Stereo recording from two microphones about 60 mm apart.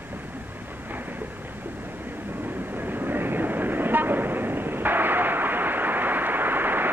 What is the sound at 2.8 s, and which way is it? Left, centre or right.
Vehicle, right.